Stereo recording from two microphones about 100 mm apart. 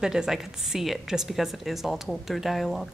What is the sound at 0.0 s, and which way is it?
A woman's voice, 5° right (ahead or behind).